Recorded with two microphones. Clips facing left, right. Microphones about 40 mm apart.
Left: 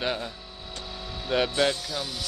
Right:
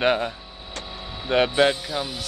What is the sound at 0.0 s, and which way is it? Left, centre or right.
Speech, right.